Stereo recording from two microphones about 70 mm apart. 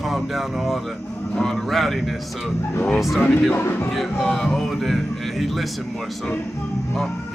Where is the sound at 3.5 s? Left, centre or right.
Left.